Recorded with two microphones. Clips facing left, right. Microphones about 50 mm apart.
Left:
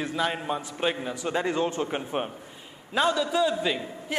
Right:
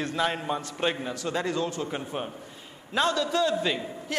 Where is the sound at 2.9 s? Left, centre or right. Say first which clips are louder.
Left 1 dB; centre.